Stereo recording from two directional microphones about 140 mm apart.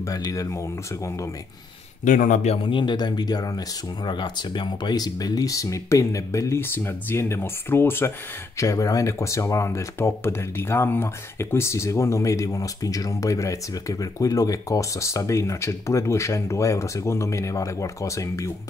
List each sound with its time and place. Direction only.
0.0 s speech: 25° left (ahead or behind)
2.0 s a man's voice: 70° left (ahead or behind)
2.4 s speech: 40° left (ahead or behind); by 18.5 s 20° left (ahead or behind)